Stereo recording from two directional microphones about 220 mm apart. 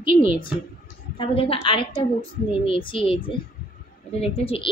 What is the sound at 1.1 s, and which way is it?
A woman's voice, 25° left (ahead or behind).